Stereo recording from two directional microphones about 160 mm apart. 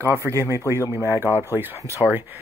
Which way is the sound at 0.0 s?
15° right (ahead or behind).